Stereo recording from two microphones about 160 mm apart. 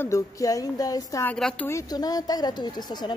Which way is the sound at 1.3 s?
5° left (ahead or behind).